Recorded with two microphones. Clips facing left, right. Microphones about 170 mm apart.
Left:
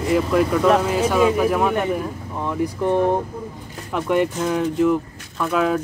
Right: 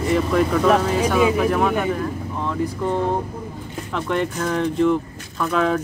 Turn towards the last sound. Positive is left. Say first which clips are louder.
# even
turn(degrees=5)  # may be behind; listen again after turning